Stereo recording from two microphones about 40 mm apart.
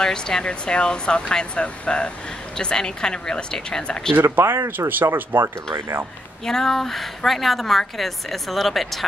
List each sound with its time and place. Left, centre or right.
0.0 s speech: centre
4.2 s speech: right
6.4 s a woman's voice: centre